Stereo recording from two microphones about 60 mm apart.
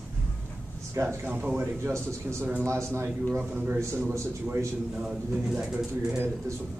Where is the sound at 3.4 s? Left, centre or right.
Right.